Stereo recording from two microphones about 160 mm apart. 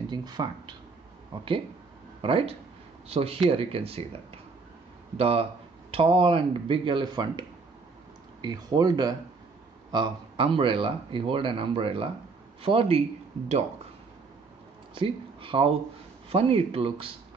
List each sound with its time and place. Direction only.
0.1 s speech: 25° right (ahead or behind)
5.1 s speech: 35° right (ahead or behind)
15.0 s speech: 35° right (ahead or behind)